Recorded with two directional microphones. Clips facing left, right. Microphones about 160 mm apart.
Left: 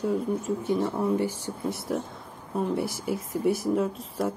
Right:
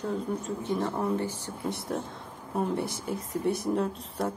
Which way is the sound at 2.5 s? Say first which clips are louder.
Left 2 dB; 5° left (ahead or behind).